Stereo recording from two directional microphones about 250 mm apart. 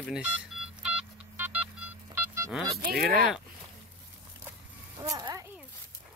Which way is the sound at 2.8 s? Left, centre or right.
Right.